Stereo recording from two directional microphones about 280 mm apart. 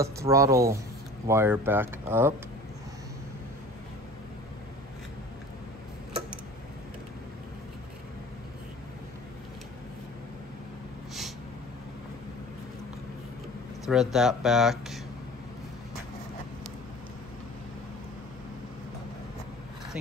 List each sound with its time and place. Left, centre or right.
0.0 s speech: centre
13.8 s speech: centre